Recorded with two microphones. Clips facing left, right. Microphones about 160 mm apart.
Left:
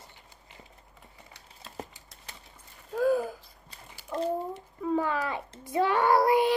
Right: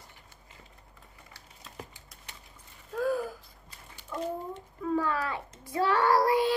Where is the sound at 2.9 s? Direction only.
20° left (ahead or behind).